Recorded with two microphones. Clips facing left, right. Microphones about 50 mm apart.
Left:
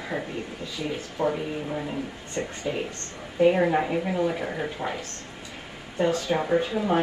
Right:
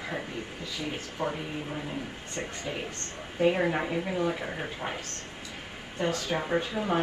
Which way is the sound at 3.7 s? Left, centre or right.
Centre.